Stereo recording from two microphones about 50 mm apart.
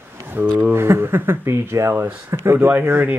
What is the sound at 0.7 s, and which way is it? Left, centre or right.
Speech, right.